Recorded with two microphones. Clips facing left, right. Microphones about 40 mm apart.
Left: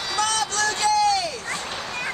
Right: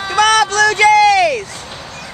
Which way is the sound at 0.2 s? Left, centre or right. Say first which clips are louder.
Right 13 dB; right.